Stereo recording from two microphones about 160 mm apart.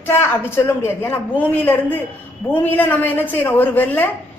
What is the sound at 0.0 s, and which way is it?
A woman's voice, 15° left (ahead or behind).